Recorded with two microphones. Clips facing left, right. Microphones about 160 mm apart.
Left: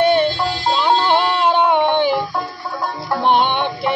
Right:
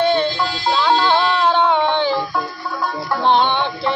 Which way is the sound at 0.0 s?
15° left (ahead or behind).